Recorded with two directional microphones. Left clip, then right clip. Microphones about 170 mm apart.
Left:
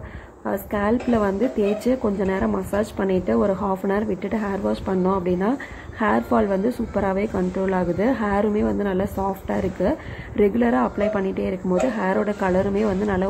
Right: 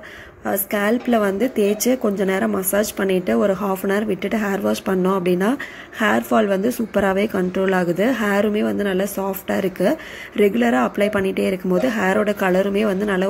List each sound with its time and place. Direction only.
0.5 s a woman's voice: 15° right (ahead or behind)